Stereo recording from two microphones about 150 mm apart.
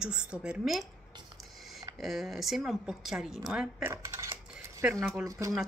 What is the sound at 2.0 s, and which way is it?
Speech, centre (ahead or behind).